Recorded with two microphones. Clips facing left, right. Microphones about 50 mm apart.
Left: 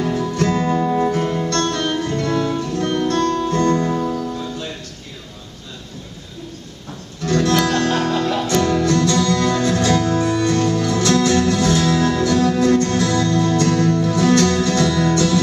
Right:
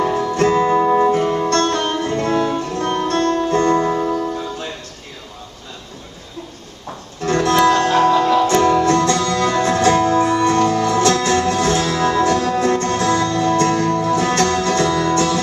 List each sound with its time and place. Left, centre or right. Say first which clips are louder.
0.0 s music: right 3 dB; right; by 1.5 s centre
1.5 s music: right 3 dB; right
7.2 s music: right 3 dB; right